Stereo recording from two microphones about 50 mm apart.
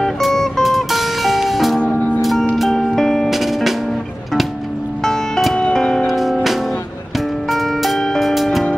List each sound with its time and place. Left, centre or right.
0.0 s music: centre
1.9 s music: left
2.5 s music: centre
3.3 s music: centre
5.0 s music: centre
6.0 s music: centre
7.4 s music: centre